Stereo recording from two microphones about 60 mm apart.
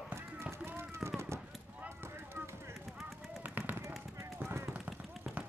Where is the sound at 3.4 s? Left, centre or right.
Right.